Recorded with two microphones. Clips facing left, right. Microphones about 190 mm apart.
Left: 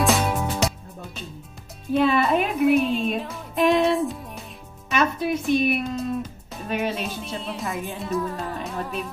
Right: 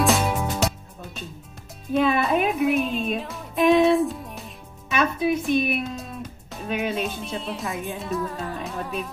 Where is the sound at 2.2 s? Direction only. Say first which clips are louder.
Left 2 dB; centre (ahead or behind).